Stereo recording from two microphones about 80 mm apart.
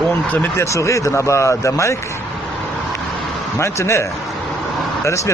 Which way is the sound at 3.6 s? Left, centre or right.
Left.